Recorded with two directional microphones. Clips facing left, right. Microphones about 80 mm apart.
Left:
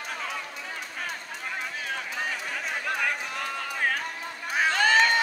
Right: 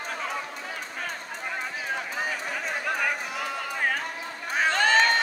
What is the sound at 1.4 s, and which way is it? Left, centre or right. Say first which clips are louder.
Run: right 2 dB; centre.